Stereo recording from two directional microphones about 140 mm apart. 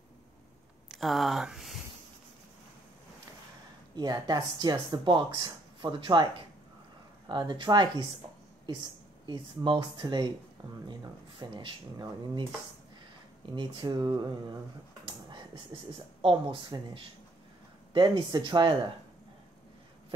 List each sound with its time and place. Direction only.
0.9 s speech: centre (ahead or behind)
3.9 s speech: 30° right (ahead or behind)
7.2 s speech: 35° right (ahead or behind)
9.2 s speech: 35° right (ahead or behind)
13.5 s speech: 35° right (ahead or behind)
15.0 s whispering: 35° right (ahead or behind)
16.2 s speech: 40° right (ahead or behind)